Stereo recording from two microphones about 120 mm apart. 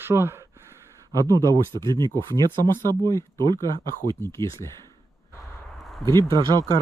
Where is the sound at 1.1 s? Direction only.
30° right (ahead or behind).